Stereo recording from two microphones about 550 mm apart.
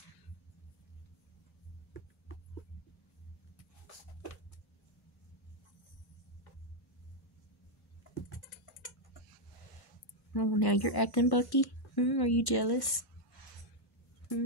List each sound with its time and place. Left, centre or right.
10.3 s speech: left